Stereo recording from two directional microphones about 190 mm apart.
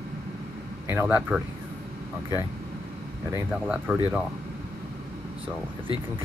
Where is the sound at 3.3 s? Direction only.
10° right (ahead or behind).